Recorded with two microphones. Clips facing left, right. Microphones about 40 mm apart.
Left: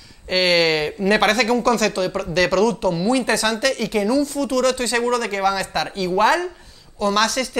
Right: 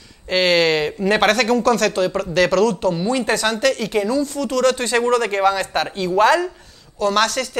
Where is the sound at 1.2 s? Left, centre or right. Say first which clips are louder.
Right 4 dB; right.